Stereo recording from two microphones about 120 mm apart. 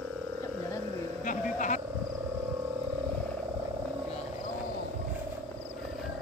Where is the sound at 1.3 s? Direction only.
90° left.